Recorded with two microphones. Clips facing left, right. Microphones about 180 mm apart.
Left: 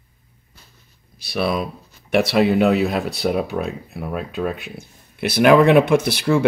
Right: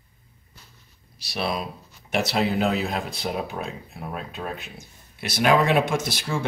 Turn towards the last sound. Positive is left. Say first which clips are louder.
# left 11 dB
turn(degrees=60)  # may be behind; listen again after turning